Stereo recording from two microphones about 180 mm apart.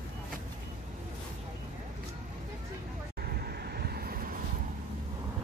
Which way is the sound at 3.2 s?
60° right (ahead or behind).